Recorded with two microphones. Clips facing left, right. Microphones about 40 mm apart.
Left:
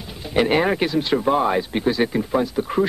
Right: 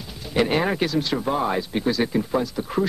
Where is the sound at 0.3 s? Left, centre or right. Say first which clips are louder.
Left 3 dB; centre.